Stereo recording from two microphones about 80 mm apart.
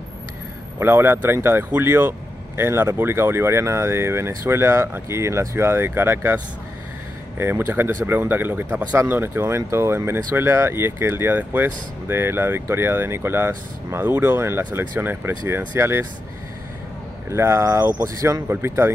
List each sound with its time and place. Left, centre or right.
0.7 s speech: right
17.3 s speech: right